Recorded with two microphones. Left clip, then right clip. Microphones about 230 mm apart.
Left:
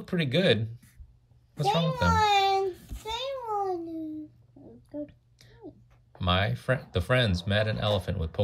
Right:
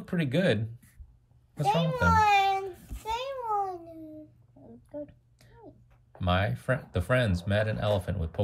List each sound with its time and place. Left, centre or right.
0.0 s speech: centre
2.1 s speech: right
2.6 s child singing: centre
3.1 s babbling: right
5.0 s a sound: centre
6.1 s speech: centre